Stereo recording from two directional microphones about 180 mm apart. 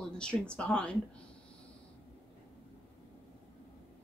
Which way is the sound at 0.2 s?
5° left (ahead or behind).